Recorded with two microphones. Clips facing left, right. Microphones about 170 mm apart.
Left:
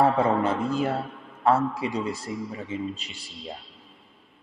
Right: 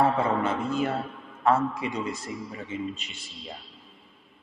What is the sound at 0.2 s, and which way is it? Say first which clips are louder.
A man's voice: left 3 dB; 35° left (ahead or behind).